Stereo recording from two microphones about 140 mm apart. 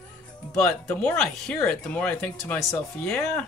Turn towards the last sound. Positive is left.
turn(degrees=10)  # may be behind; listen again after turning